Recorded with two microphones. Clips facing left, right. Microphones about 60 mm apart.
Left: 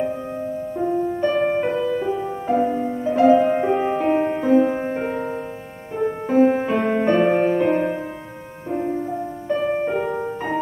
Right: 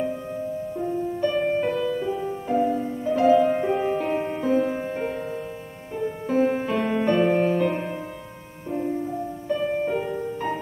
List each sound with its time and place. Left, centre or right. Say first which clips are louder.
0.0 s music: left 3 dB; left